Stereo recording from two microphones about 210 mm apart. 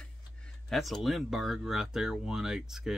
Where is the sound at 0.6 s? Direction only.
Centre (ahead or behind).